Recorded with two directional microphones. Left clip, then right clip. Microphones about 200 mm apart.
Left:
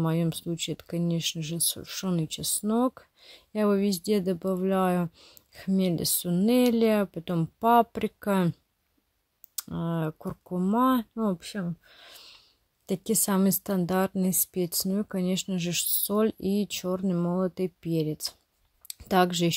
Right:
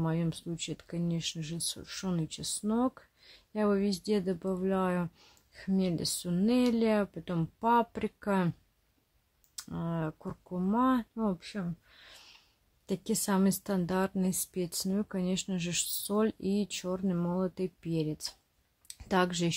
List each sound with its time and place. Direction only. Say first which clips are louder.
0.0 s speech: left 5 dB; 30° left (ahead or behind)
9.6 s speech: left 5 dB; 30° left (ahead or behind)